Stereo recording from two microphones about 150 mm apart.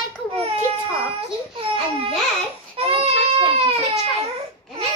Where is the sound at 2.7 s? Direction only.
40° right (ahead or behind).